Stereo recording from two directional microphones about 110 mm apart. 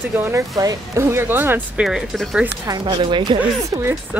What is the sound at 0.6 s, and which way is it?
Speech, 30° right (ahead or behind).